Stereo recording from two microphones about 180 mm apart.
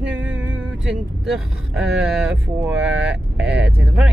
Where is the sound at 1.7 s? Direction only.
5° right (ahead or behind).